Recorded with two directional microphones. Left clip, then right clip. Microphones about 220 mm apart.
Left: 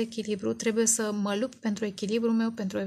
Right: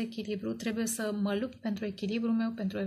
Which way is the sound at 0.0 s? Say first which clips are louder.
Left 6 dB; 45° left (ahead or behind).